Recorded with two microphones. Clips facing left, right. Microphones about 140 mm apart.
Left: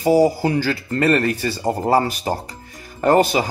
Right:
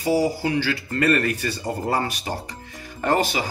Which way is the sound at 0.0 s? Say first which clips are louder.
Left 6 dB; 45° left (ahead or behind).